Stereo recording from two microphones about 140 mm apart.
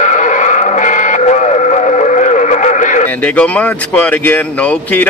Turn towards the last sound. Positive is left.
turn(degrees=10)  # may be behind; listen again after turning